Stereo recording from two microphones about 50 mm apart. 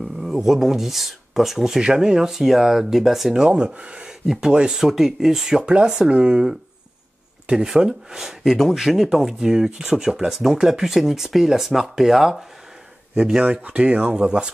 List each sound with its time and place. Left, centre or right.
0.0 s speech: centre
3.4 s speech: right
13.7 s speech: right